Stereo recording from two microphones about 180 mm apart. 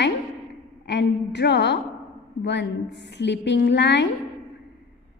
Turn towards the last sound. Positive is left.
turn(degrees=70)  # may be behind; listen again after turning